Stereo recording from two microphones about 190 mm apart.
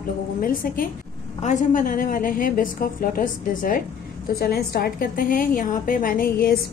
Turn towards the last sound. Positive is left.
turn(degrees=50)  # may be behind; listen again after turning